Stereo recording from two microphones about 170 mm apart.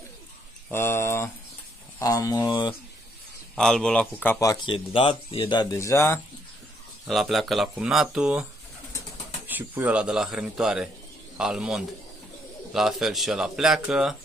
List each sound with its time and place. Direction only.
0.7 s speech: 15° left (ahead or behind)
3.5 s speech: 5° left (ahead or behind)
7.1 s speech: centre (ahead or behind)
9.5 s speech: 10° right (ahead or behind)